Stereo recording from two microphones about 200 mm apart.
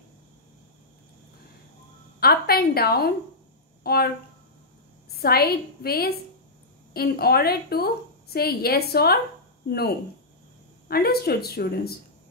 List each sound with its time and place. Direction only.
2.1 s a woman's voice: 50° left (ahead or behind)
5.1 s a woman's voice: 50° left (ahead or behind)